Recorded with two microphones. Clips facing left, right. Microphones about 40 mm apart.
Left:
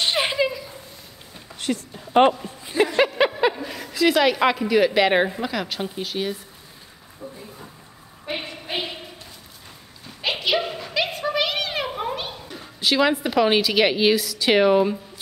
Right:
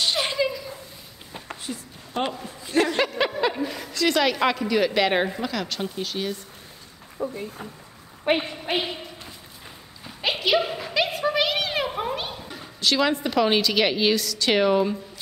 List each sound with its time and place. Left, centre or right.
0.0 s a sound: left
1.7 s a woman's voice: left
2.1 s speech: left
2.7 s speech: right
3.1 s a sound: centre
3.6 s a woman's voice: centre
7.2 s a woman's voice: right
10.3 s a sound: centre
12.8 s a woman's voice: centre